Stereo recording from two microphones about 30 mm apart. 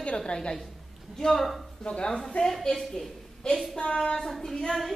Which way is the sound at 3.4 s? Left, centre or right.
Left.